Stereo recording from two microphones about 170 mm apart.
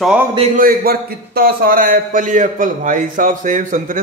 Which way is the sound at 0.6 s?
60° right (ahead or behind).